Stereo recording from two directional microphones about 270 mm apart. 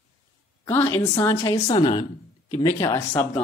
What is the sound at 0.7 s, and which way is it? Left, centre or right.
Speech, centre.